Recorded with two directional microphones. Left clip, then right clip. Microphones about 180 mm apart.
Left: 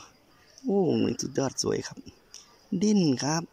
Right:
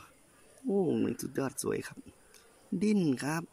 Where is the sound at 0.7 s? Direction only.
Centre (ahead or behind).